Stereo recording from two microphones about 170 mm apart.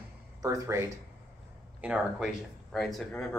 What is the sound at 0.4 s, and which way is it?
Speech, 20° right (ahead or behind).